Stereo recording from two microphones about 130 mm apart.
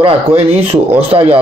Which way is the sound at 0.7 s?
50° right (ahead or behind).